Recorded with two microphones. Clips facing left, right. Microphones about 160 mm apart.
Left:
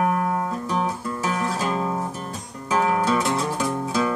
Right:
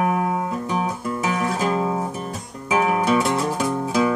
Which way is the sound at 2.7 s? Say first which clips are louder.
Right 2 dB; 10° right (ahead or behind).